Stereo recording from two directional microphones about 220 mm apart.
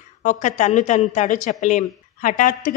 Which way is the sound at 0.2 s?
35° left (ahead or behind).